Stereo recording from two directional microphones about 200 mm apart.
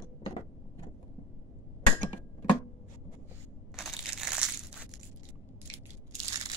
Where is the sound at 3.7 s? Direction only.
Centre (ahead or behind).